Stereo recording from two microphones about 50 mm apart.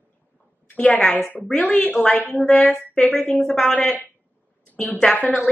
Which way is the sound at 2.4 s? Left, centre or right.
Centre.